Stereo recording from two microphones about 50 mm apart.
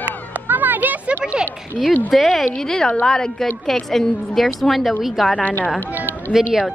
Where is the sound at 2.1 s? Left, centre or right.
Centre.